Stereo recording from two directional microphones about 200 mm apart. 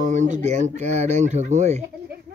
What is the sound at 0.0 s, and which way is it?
Speech, 35° right (ahead or behind).